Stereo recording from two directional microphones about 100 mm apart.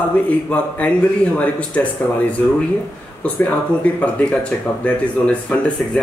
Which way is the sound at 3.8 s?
15° left (ahead or behind).